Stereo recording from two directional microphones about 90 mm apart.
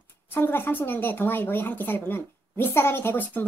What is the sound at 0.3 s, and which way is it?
Speech, 25° left (ahead or behind).